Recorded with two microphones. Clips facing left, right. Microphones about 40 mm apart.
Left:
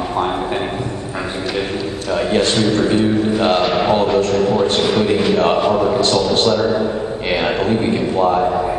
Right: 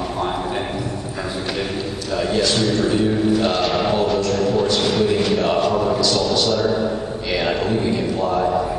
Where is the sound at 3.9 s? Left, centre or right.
Left.